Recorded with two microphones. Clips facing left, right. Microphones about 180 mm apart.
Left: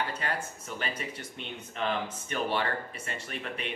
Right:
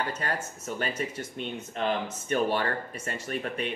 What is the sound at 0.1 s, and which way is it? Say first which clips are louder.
Speech: right 2 dB; 40° right (ahead or behind).